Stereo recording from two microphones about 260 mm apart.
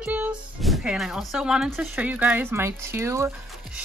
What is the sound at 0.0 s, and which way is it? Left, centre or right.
Speech, centre.